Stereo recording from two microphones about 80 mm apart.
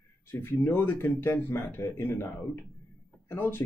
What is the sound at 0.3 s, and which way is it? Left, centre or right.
Speech, left.